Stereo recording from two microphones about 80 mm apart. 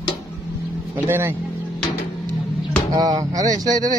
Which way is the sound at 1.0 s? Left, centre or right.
Right.